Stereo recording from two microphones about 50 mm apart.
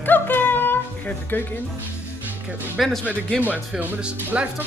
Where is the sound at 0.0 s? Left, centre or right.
Left.